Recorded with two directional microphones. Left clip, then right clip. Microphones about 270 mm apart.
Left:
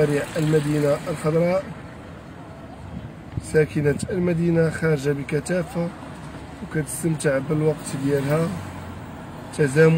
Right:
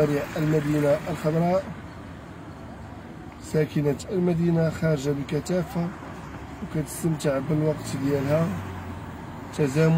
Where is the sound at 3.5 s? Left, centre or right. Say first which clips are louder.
Left 5 dB; left.